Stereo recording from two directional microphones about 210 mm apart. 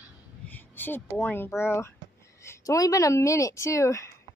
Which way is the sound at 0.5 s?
10° left (ahead or behind).